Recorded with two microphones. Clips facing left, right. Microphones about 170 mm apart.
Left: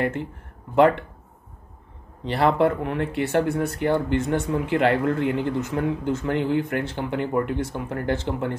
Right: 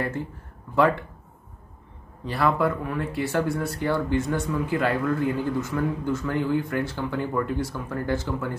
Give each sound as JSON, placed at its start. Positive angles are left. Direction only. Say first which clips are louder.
{"t": 2.2, "sound": "speech", "louder": "left 3 dB", "side_deg": 25}